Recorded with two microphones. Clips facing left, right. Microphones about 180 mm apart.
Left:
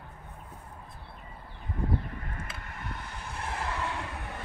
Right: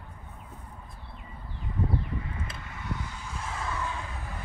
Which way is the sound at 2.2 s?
55° left (ahead or behind).